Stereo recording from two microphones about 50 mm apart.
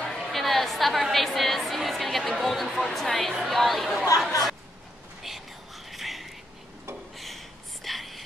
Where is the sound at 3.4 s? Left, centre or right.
Centre.